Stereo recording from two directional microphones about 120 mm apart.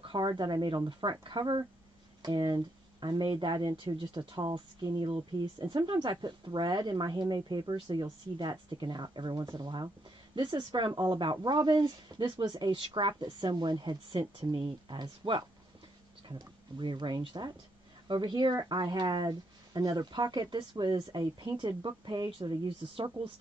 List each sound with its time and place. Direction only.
0.0 s speech: 45° right (ahead or behind)